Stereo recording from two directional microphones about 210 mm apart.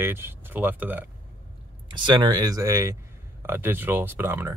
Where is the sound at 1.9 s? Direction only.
20° right (ahead or behind).